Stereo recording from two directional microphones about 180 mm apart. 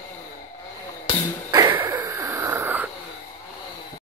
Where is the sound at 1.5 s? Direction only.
15° right (ahead or behind).